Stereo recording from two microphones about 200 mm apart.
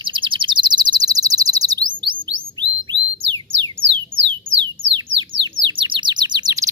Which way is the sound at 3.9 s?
25° right (ahead or behind).